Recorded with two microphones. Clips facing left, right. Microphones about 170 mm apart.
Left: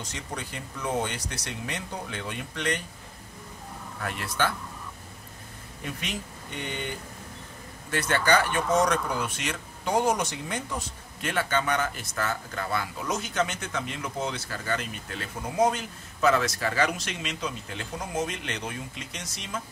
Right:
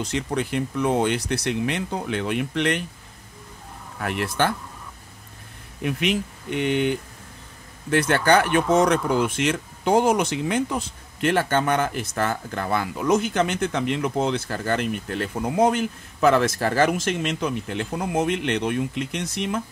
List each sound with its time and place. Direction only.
0.0 s speech: 65° right (ahead or behind)
4.0 s speech: 65° right (ahead or behind)
5.8 s speech: 70° right (ahead or behind)
7.9 s speech: 55° right (ahead or behind)